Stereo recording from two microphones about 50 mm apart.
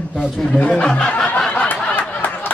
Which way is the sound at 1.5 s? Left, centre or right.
Left.